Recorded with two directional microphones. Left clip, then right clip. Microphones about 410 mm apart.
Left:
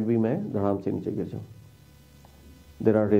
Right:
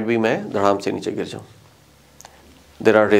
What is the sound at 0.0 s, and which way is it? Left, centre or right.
Speech, centre.